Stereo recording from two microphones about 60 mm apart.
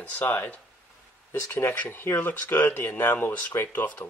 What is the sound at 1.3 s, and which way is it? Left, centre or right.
Speech, left.